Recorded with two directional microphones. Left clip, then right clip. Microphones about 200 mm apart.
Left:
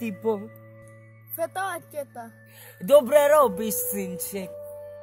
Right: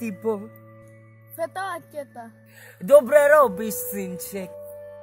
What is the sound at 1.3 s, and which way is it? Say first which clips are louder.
Speech: even; 20° left (ahead or behind).